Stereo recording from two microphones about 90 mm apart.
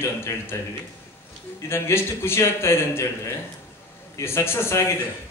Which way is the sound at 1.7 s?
30° left (ahead or behind).